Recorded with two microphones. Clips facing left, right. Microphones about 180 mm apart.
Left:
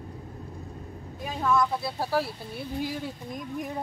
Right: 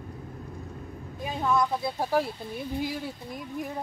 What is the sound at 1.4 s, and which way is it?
Speech, 15° right (ahead or behind).